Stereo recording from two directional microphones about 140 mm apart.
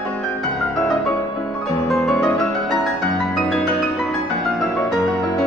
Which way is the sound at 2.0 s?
5° left (ahead or behind).